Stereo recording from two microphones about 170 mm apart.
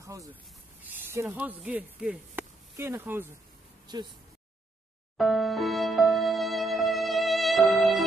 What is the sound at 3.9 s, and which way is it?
Speech, 25° right (ahead or behind).